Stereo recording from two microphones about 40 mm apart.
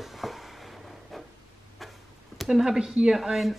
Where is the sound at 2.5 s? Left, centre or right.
Centre.